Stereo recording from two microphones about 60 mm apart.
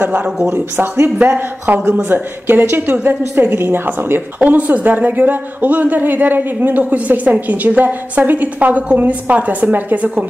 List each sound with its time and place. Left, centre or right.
0.0 s speech: right
0.5 s speech: right